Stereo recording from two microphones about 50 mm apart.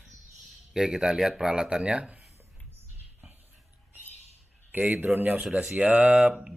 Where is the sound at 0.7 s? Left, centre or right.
Centre.